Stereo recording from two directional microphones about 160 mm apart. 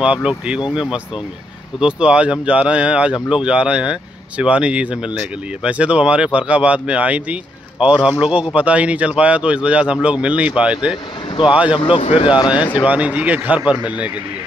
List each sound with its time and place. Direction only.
0.0 s speech: 5° right (ahead or behind)
11.7 s speech: 35° left (ahead or behind)
12.8 s speech: 10° right (ahead or behind)